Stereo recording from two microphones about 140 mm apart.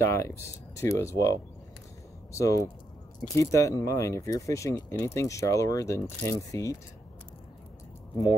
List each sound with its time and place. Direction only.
0.0 s speech: 20° left (ahead or behind)
2.3 s speech: 25° left (ahead or behind)